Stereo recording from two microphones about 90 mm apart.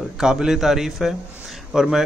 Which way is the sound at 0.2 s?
5° right (ahead or behind).